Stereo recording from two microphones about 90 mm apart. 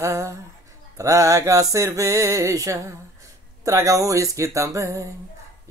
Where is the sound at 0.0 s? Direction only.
35° right (ahead or behind).